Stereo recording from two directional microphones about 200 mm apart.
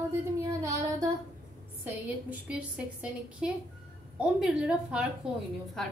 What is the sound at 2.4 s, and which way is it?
Speech, 5° right (ahead or behind).